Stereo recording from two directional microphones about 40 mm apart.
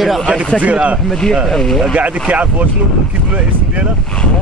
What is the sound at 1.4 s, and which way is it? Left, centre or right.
Speech, centre.